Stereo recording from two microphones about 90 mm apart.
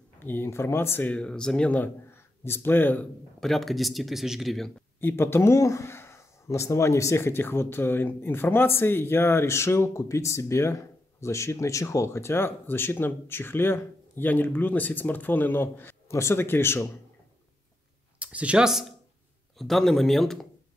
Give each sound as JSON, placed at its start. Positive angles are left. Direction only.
{"t": 0.2, "sound": "a man's voice", "side_deg": 25}
{"t": 1.1, "sound": "speech", "side_deg": 10}
{"t": 2.0, "sound": "a man's voice", "side_deg": 25}
{"t": 3.3, "sound": "speech", "side_deg": 5}
{"t": 5.0, "sound": "a man's voice", "side_deg": 25}
{"t": 18.2, "sound": "speech", "side_deg": -15}